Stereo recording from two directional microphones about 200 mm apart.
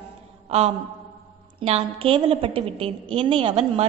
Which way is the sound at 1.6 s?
30° right (ahead or behind).